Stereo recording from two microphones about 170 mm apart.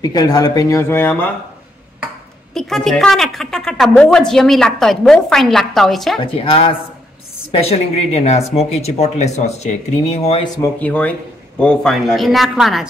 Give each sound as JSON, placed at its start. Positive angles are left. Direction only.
{"t": 0.0, "sound": "speech", "side_deg": 20}
{"t": 2.5, "sound": "a woman's voice", "side_deg": 0}
{"t": 6.2, "sound": "speech", "side_deg": 30}
{"t": 10.4, "sound": "speech", "side_deg": 20}
{"t": 10.8, "sound": "a woman's voice", "side_deg": 10}